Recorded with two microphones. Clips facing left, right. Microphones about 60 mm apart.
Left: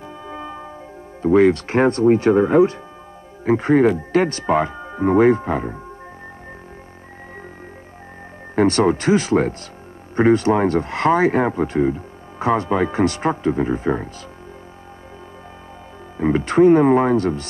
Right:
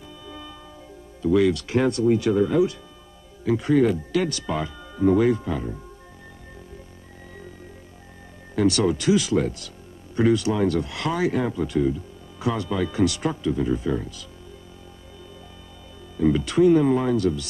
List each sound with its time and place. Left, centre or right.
0.2 s music: left
1.2 s speech: left
8.5 s speech: left
16.2 s speech: left